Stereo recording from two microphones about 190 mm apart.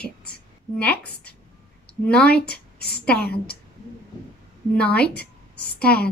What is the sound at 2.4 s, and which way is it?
Speech, 60° left (ahead or behind).